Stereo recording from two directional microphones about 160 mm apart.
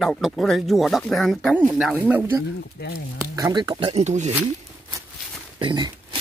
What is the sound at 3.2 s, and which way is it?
Speech, 20° right (ahead or behind).